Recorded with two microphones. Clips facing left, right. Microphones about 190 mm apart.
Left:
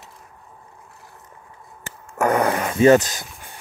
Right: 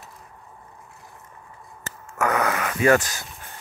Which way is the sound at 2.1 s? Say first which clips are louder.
Left 4 dB; 35° left (ahead or behind).